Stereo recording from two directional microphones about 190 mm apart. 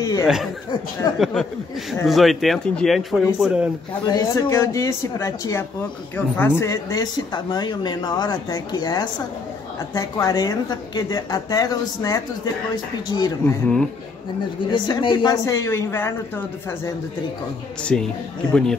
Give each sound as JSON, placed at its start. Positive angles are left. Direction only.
{"t": 0.0, "sound": "speech", "side_deg": 20}
{"t": 1.2, "sound": "speech", "side_deg": 0}
{"t": 4.0, "sound": "speech", "side_deg": 20}
{"t": 14.7, "sound": "speech", "side_deg": 25}
{"t": 17.9, "sound": "speech", "side_deg": 5}